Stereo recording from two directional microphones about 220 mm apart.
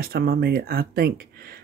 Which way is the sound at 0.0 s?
45° right (ahead or behind).